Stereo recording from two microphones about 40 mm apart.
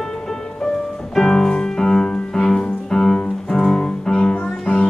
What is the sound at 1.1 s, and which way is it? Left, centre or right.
Music, centre.